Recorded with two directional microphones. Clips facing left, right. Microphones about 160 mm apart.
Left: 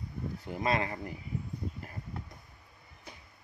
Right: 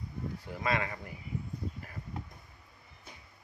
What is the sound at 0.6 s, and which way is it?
Speech, 30° left (ahead or behind).